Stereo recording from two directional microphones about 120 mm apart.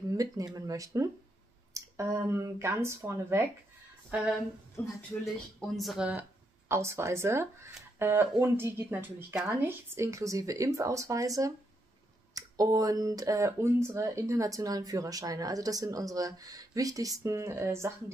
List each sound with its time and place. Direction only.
0.1 s speech: 30° right (ahead or behind)
4.1 s speech: 10° right (ahead or behind)
5.6 s speech: centre (ahead or behind)
6.7 s speech: 25° right (ahead or behind)